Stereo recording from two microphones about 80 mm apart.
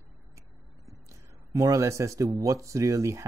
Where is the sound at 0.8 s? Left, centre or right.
Right.